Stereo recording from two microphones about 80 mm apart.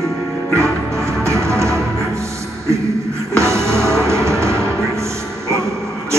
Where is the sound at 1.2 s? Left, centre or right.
Right.